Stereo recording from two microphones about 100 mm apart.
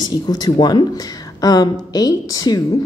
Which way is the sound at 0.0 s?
45° left (ahead or behind).